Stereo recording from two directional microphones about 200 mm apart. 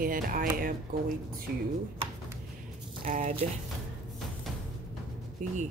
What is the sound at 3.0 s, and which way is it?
Speech, 40° right (ahead or behind).